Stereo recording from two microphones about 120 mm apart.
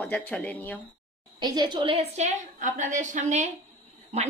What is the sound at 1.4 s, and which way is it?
A woman's voice, 35° right (ahead or behind).